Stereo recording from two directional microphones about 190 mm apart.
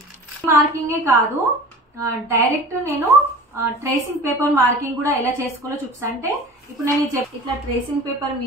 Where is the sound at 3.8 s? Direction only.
15° right (ahead or behind).